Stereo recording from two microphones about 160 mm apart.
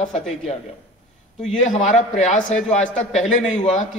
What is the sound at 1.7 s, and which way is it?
Speech, 45° left (ahead or behind).